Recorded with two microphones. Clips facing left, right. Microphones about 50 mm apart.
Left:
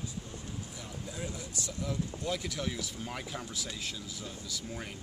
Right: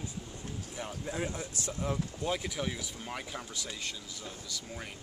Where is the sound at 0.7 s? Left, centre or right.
Right.